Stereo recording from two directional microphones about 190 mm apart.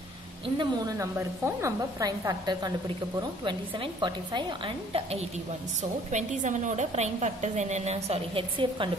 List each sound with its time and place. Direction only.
0.6 s a woman's voice: 20° right (ahead or behind)
5.8 s a woman's voice: 40° right (ahead or behind)